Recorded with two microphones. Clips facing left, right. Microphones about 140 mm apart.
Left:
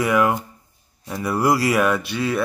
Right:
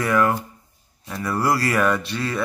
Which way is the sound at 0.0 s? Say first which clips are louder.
Left 1 dB; 15° left (ahead or behind).